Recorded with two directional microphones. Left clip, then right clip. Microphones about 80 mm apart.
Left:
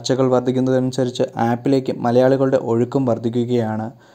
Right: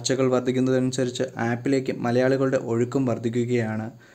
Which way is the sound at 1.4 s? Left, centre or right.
Left.